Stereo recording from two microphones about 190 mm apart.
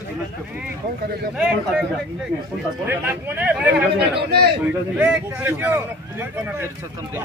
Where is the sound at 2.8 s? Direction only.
10° right (ahead or behind).